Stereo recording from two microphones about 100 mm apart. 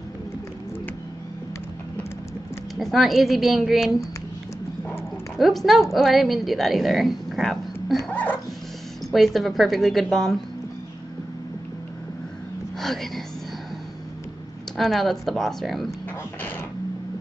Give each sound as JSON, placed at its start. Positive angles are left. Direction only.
{"t": 2.8, "sound": "a woman's voice", "side_deg": 0}
{"t": 5.4, "sound": "a woman's voice", "side_deg": 0}
{"t": 8.1, "sound": "music", "side_deg": 15}
{"t": 9.1, "sound": "a woman's voice", "side_deg": 0}
{"t": 12.7, "sound": "speech", "side_deg": 0}
{"t": 14.8, "sound": "a woman's voice", "side_deg": 0}